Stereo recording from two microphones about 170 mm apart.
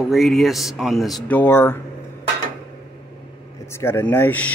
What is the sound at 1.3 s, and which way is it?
Speech, 15° left (ahead or behind).